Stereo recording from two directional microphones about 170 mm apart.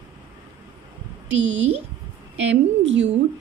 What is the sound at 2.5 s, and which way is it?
Speech, 90° right.